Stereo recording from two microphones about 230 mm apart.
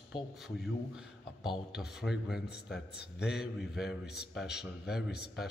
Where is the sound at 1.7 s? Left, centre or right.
Centre.